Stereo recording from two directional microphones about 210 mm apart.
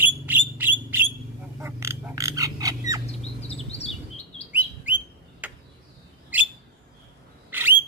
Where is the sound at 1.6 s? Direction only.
15° right (ahead or behind).